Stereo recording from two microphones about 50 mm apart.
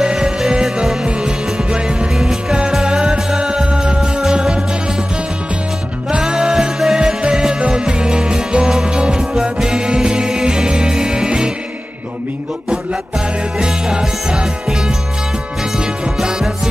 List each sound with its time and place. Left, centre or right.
0.0 s music: centre
6.0 s music: centre
13.6 s music: centre
15.8 s music: centre